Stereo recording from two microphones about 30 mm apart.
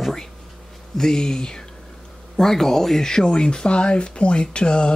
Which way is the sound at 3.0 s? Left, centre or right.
Left.